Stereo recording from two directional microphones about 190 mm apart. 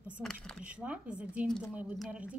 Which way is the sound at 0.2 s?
Centre (ahead or behind).